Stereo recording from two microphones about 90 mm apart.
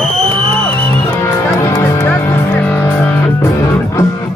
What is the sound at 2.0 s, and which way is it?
Music, 15° left (ahead or behind).